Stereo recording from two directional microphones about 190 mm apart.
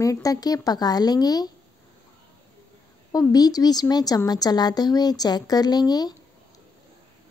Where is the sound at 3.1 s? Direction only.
20° left (ahead or behind).